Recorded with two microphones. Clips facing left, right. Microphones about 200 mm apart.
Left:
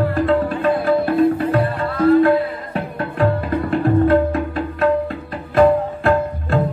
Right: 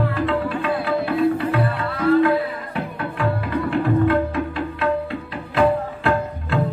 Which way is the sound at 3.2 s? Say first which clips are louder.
Left 4 dB; 45° left (ahead or behind).